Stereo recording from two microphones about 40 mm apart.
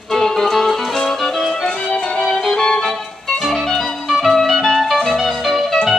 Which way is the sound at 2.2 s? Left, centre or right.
Centre.